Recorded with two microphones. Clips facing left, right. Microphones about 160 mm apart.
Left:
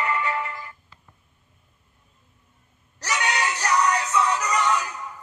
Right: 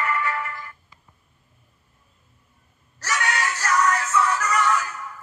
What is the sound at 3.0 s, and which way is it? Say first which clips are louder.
Music: even; 20° left (ahead or behind).